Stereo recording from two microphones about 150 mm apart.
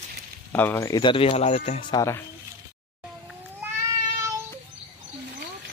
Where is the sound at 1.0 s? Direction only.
35° left (ahead or behind).